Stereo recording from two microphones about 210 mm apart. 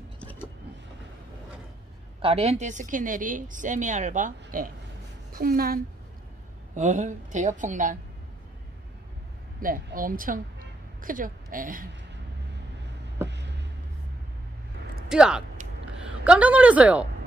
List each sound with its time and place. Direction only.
0.2 s vehicle: 10° left (ahead or behind)
2.2 s a woman's voice: 30° right (ahead or behind)
9.6 s a woman's voice: 40° right (ahead or behind)
13.3 s a sound: 55° right (ahead or behind)
15.0 s speech: 5° right (ahead or behind)